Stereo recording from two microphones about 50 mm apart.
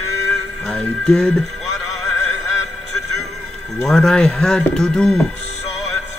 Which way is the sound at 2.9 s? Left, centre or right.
Centre.